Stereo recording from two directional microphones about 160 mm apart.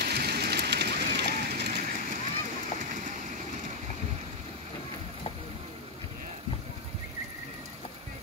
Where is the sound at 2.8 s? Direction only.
50° right (ahead or behind).